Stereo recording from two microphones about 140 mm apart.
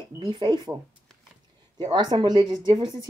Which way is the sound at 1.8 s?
30° right (ahead or behind).